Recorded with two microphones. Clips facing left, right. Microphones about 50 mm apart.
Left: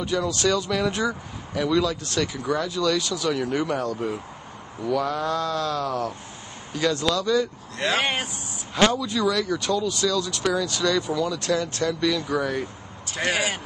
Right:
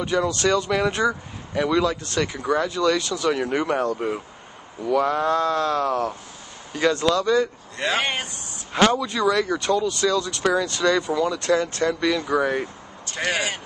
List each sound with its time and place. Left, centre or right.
0.0 s speech: right
7.7 s speech: centre
8.8 s speech: right
9.8 s speech: right
13.1 s speech: centre